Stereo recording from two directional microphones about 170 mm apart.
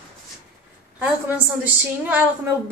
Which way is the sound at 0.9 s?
10° right (ahead or behind).